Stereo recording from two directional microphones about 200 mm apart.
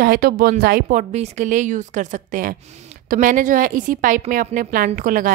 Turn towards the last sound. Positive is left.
turn(degrees=-40)  # may be behind; listen again after turning